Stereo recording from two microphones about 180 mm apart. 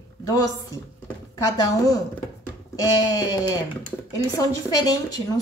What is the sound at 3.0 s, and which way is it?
A woman's voice, 20° left (ahead or behind).